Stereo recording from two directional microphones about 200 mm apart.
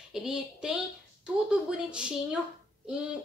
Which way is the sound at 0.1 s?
5° right (ahead or behind).